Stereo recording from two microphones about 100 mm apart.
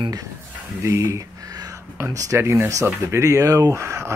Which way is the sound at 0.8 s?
30° right (ahead or behind).